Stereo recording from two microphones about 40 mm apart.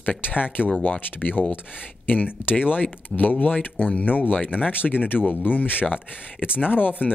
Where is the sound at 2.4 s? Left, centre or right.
Left.